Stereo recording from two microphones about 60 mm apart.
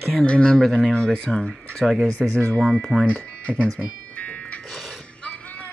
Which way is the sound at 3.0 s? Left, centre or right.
Centre.